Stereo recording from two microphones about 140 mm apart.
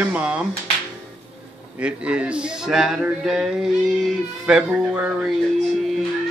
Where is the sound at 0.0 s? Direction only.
10° right (ahead or behind).